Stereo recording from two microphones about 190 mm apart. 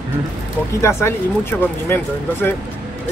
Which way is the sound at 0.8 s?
10° left (ahead or behind).